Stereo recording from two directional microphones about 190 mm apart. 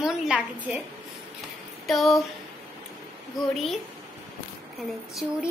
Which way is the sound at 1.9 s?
Centre (ahead or behind).